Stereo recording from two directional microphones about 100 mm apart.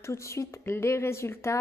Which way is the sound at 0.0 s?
30° left (ahead or behind).